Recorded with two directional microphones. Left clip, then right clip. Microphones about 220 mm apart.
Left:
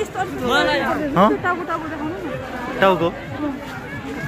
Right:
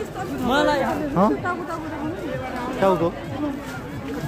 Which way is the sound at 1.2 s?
5° right (ahead or behind).